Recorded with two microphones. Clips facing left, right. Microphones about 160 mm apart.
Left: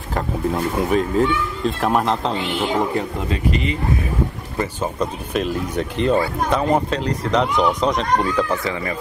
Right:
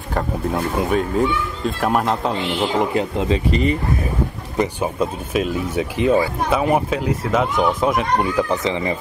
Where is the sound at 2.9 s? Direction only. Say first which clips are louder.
Right 3 dB; 15° right (ahead or behind).